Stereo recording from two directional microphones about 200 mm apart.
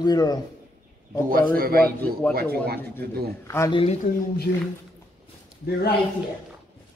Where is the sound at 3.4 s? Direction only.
15° left (ahead or behind).